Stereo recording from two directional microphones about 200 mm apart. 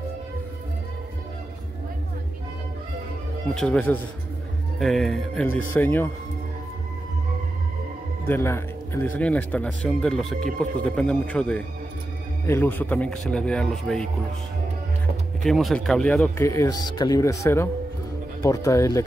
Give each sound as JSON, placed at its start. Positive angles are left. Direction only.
{"t": 3.5, "sound": "speech", "side_deg": 5}
{"t": 8.3, "sound": "speech", "side_deg": 10}
{"t": 15.4, "sound": "speech", "side_deg": 0}